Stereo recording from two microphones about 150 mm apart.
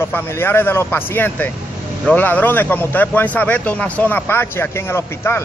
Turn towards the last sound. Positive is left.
turn(degrees=15)  # may be behind; listen again after turning